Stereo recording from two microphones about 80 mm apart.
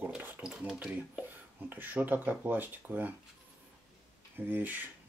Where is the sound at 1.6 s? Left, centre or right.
Right.